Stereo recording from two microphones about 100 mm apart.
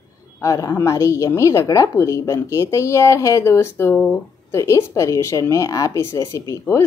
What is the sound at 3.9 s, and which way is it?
Speech, 10° left (ahead or behind).